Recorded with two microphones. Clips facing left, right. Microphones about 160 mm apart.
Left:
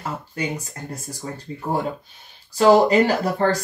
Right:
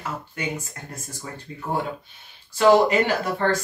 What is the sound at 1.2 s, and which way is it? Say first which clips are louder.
Speech: left 4 dB; 35° left (ahead or behind).